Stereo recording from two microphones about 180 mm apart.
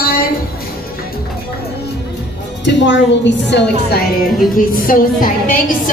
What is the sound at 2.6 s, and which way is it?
A woman's voice, 85° left.